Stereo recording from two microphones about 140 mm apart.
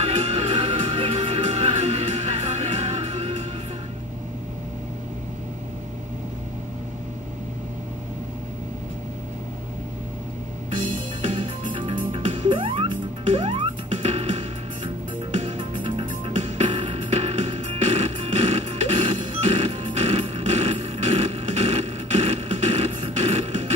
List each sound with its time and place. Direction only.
0.0 s music: 45° right (ahead or behind)
11.2 s music: 40° right (ahead or behind)